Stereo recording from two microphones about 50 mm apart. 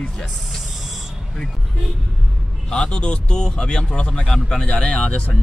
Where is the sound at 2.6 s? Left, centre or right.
Centre.